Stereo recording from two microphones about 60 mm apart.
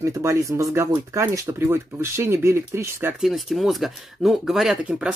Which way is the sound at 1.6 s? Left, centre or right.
Right.